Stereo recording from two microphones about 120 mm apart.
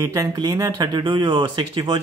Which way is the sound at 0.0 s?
30° right (ahead or behind).